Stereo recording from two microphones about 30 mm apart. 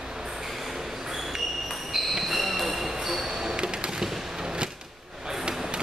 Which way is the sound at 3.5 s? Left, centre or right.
Right.